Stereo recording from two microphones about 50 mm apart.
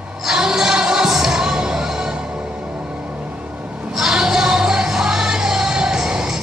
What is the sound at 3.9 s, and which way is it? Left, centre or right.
Music, centre.